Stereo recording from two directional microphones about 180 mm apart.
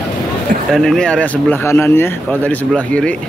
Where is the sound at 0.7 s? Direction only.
5° left (ahead or behind).